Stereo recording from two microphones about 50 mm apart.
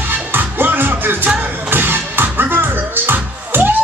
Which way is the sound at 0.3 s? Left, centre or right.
Right.